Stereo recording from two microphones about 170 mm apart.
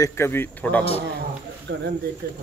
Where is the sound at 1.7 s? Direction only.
90° right.